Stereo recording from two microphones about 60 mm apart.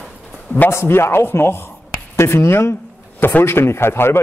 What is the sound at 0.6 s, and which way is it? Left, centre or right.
A man's voice, left.